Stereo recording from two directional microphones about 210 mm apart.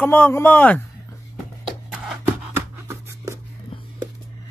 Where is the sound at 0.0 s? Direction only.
5° left (ahead or behind).